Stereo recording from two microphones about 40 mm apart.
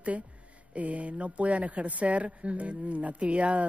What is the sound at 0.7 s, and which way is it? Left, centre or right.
Speech, right.